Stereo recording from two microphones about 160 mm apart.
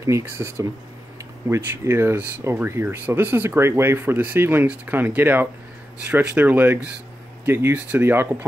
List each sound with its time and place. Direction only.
0.0 s speech: 15° right (ahead or behind)